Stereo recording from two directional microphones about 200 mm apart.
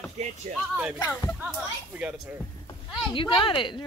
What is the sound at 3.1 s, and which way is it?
Speech, 25° left (ahead or behind).